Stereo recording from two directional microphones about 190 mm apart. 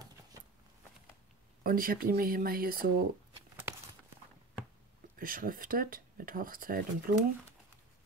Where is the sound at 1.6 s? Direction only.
50° right (ahead or behind).